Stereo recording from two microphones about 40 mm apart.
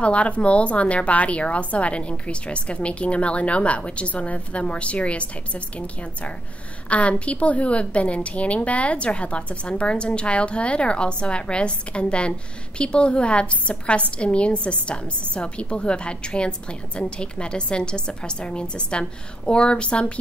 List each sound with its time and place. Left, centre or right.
0.0 s a woman's voice: left